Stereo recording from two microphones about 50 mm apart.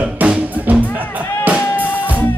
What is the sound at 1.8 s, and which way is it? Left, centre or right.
Music, left.